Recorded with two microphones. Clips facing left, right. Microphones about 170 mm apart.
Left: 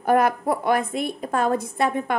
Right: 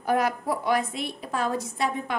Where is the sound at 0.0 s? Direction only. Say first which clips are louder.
Left 5 dB; 55° left (ahead or behind).